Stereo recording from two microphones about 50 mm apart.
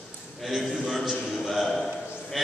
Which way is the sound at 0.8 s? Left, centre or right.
Centre.